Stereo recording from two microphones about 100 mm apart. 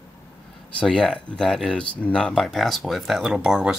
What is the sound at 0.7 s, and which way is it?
Speech, 10° left (ahead or behind).